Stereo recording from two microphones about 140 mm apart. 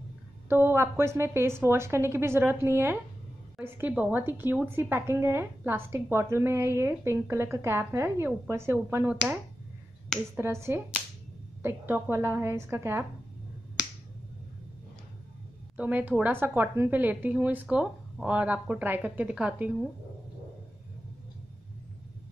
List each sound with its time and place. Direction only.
0.5 s a woman's voice: 15° right (ahead or behind)
15.7 s a woman's voice: 10° right (ahead or behind)